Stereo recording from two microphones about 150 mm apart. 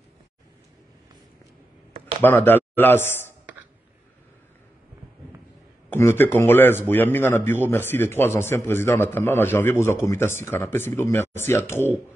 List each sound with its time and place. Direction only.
2.2 s a man's voice: 15° left (ahead or behind)
5.9 s a man's voice: 15° left (ahead or behind)